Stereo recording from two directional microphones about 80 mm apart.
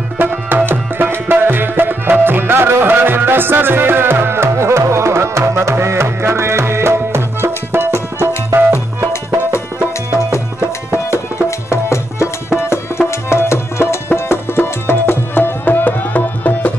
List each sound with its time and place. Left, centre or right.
0.2 s music: right
11.7 s music: left